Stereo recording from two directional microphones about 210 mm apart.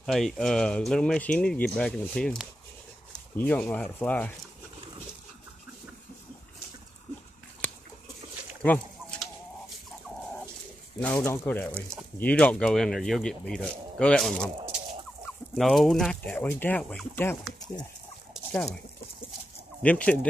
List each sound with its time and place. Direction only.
0.0 s speech: centre (ahead or behind)
8.6 s chicken: 5° left (ahead or behind)
11.0 s speech: 5° left (ahead or behind)
18.3 s a sound: 5° left (ahead or behind)
19.8 s speech: 5° left (ahead or behind)